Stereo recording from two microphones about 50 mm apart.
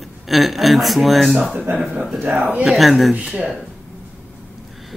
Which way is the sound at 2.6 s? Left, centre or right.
Centre.